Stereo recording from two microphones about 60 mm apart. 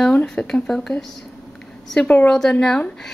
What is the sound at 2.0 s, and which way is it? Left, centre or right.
Speech, left.